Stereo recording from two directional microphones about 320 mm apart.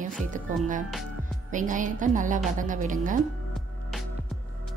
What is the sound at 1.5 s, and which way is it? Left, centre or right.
A woman's voice, right.